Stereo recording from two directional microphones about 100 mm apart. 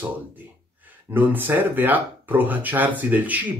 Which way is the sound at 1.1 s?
20° right (ahead or behind).